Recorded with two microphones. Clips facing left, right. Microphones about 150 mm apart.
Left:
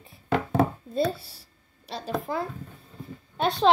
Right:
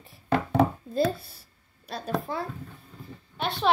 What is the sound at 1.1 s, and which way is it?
Speech, 30° left (ahead or behind).